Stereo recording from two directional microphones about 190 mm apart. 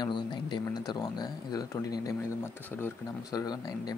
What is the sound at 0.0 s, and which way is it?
Speech, 25° left (ahead or behind).